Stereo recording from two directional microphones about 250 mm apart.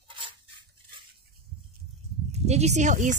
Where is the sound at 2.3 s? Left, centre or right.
Right.